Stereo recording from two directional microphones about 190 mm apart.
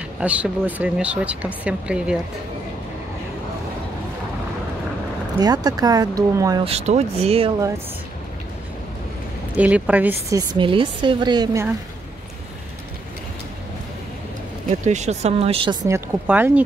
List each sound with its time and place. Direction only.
0.2 s speech: 10° right (ahead or behind)
5.4 s speech: 20° right (ahead or behind)
6.6 s speech: 35° right (ahead or behind)
9.6 s speech: 5° right (ahead or behind)
10.5 s speech: 25° right (ahead or behind)
14.9 s speech: 35° right (ahead or behind)
16.3 s speech: 10° right (ahead or behind)